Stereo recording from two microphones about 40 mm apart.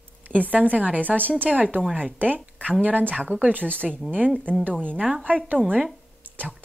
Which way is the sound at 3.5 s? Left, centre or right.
Left.